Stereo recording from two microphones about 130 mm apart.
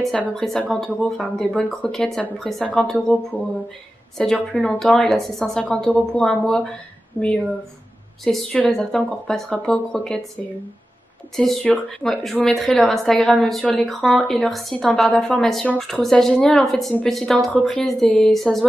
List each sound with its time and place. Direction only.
0.4 s speech: 5° left (ahead or behind)
4.2 s speech: 5° left (ahead or behind)
11.3 s speech: centre (ahead or behind)